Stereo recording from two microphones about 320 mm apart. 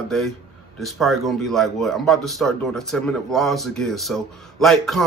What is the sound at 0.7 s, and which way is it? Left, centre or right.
Speech, centre.